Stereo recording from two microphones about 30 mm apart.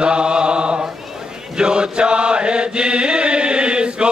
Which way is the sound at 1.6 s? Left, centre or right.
Right.